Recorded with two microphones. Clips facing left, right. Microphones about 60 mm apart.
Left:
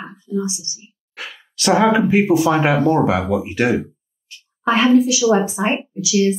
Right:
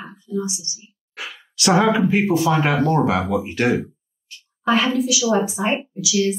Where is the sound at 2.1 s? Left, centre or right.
Centre.